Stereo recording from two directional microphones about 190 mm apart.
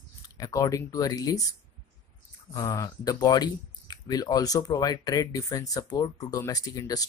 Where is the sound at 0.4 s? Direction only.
20° left (ahead or behind).